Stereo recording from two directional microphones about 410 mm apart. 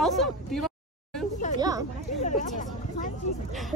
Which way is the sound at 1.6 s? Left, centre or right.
Centre.